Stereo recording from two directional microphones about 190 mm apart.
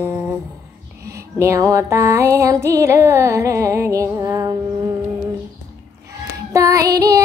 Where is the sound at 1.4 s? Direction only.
15° right (ahead or behind).